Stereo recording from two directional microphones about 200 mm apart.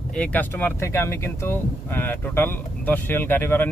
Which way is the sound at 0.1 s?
5° left (ahead or behind).